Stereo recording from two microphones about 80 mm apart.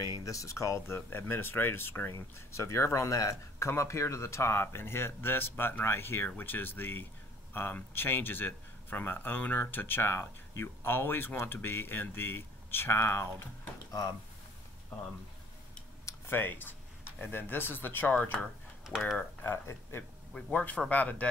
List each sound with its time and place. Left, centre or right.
0.2 s speech: left
16.1 s speech: left
18.9 s speech: centre
19.4 s speech: left
20.3 s a man's voice: centre